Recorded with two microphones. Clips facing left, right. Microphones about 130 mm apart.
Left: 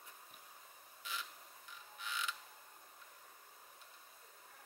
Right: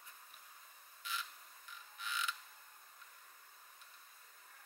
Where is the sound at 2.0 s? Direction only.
10° left (ahead or behind).